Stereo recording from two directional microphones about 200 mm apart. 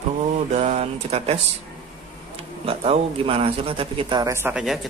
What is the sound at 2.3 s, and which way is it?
Speech, 30° right (ahead or behind).